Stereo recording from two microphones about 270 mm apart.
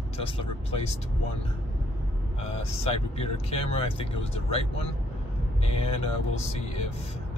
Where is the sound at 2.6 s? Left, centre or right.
Left.